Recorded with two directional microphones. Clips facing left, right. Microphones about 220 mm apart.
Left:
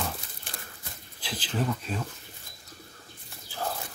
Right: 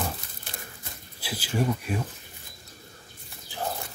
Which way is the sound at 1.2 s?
10° right (ahead or behind).